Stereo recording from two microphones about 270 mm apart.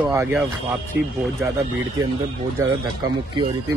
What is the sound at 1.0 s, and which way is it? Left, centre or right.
Speech, right.